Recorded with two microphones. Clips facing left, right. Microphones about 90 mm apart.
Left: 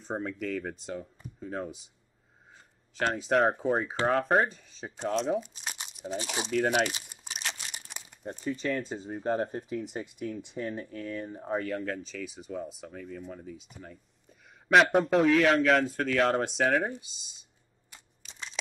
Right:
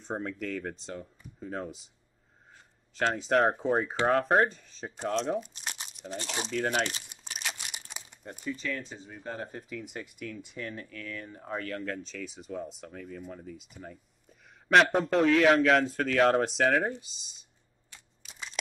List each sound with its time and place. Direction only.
0.0 s speech: centre (ahead or behind)
3.0 s speech: 5° left (ahead or behind)
7.2 s crumpling: centre (ahead or behind)
8.6 s speech: 40° left (ahead or behind)
11.6 s speech: 5° left (ahead or behind)
18.2 s a sound: 5° right (ahead or behind)